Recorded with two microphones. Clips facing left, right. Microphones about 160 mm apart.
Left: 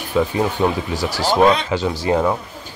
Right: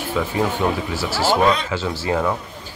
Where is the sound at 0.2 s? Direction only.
20° left (ahead or behind).